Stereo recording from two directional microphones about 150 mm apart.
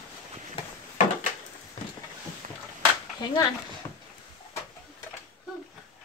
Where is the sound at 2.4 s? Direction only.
55° right (ahead or behind).